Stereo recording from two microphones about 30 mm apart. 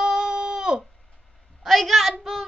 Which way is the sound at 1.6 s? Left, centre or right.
Centre.